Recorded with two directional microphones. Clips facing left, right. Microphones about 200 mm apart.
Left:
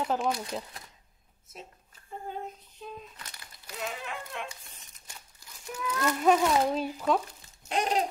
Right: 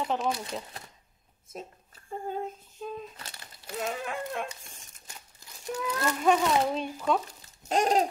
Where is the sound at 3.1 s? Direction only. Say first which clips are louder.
Right 2 dB; 30° right (ahead or behind).